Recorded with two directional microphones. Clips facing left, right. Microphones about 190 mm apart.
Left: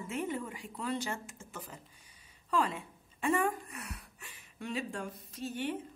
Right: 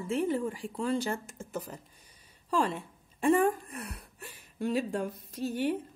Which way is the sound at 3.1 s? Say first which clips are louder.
Right 6 dB; 35° right (ahead or behind).